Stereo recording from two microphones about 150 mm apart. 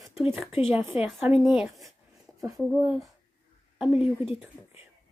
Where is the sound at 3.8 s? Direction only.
5° right (ahead or behind).